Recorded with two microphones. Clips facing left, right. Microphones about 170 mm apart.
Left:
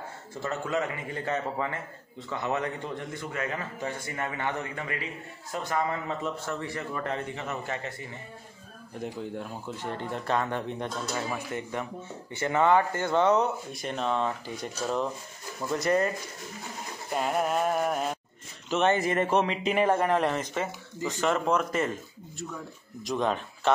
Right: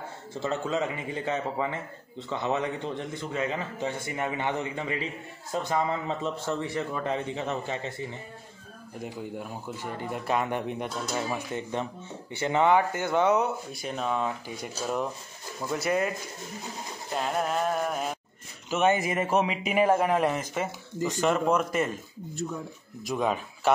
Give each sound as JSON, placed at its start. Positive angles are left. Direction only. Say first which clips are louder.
{"t": 0.4, "sound": "a man's voice", "louder": "right 1 dB", "side_deg": -25}
{"t": 9.0, "sound": "a man's voice", "louder": "left 1 dB", "side_deg": -5}
{"t": 17.1, "sound": "a sound", "louder": "left 1 dB", "side_deg": 5}
{"t": 18.7, "sound": "speech", "louder": "even", "side_deg": -5}
{"t": 23.0, "sound": "speech", "louder": "even", "side_deg": -5}